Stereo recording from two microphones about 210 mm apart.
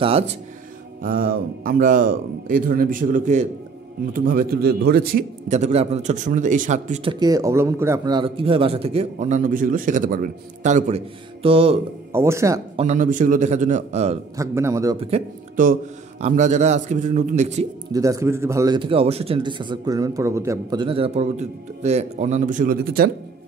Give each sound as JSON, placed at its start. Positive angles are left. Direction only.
{"t": 0.0, "sound": "a man's voice", "side_deg": -30}
{"t": 1.0, "sound": "a man's voice", "side_deg": -45}
{"t": 5.5, "sound": "a man's voice", "side_deg": -30}
{"t": 7.1, "sound": "a man's voice", "side_deg": -20}
{"t": 12.1, "sound": "a man's voice", "side_deg": -15}
{"t": 12.7, "sound": "a man's voice", "side_deg": -35}
{"t": 14.3, "sound": "a man's voice", "side_deg": -15}
{"t": 15.0, "sound": "a man's voice", "side_deg": -35}
{"t": 17.9, "sound": "a man's voice", "side_deg": -15}